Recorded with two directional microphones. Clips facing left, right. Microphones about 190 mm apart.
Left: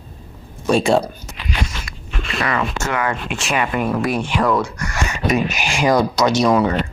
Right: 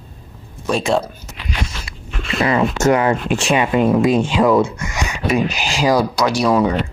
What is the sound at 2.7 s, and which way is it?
Speech, 40° right (ahead or behind).